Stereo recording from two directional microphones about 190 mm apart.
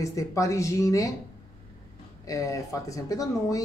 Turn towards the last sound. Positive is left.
turn(degrees=15)  # may be behind; listen again after turning